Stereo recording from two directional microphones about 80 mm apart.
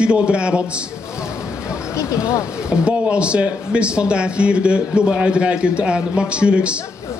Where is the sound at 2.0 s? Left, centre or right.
Left.